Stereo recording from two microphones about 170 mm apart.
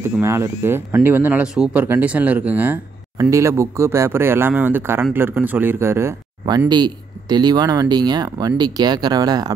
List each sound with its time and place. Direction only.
0.2 s speech: 15° right (ahead or behind)